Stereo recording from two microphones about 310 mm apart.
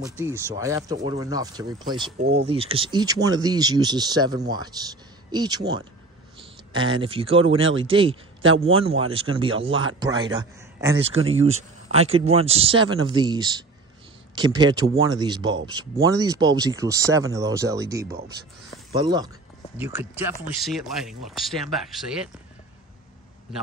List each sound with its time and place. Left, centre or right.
0.2 s speech: centre
2.1 s speech: right
7.6 s speech: right
7.9 s speech: centre